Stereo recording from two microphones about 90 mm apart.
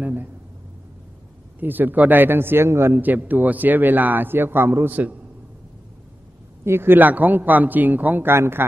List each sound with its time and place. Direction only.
0.0 s a sound: 20° right (ahead or behind)
1.6 s a man's voice: 20° right (ahead or behind)
6.6 s a man's voice: 25° right (ahead or behind)